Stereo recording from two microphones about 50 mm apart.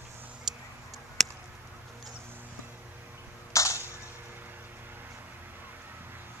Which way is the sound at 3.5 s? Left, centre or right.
Left.